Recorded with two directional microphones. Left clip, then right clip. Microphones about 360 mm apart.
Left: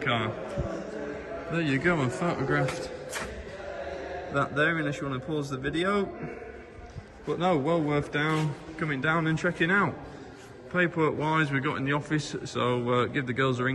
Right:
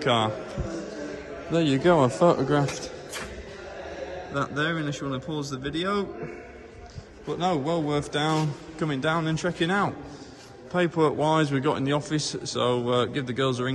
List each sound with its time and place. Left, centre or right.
0.0 s a man's voice: centre
1.5 s a man's voice: centre
4.3 s a man's voice: centre
7.2 s a man's voice: centre